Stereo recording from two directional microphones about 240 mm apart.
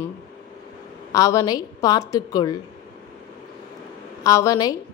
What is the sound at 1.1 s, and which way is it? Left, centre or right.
A woman's voice, centre.